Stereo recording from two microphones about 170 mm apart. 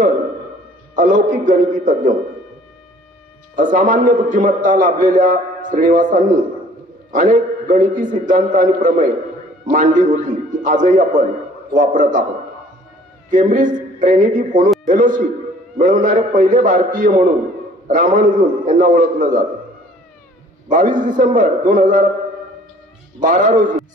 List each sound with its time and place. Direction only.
0.9 s a man's voice: 50° right (ahead or behind)
3.5 s a man's voice: 50° right (ahead or behind)
13.3 s a man's voice: 50° right (ahead or behind)
20.7 s a man's voice: 50° right (ahead or behind)
23.2 s a man's voice: 50° right (ahead or behind)